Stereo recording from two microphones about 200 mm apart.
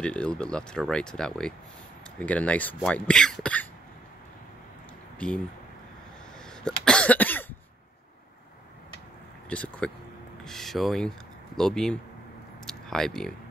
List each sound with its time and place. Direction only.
0.0 s speech: 5° left (ahead or behind)
5.2 s speech: 5° left (ahead or behind)
6.6 s cough: 5° left (ahead or behind)
9.5 s speech: 5° left (ahead or behind)
12.6 s a sound: centre (ahead or behind)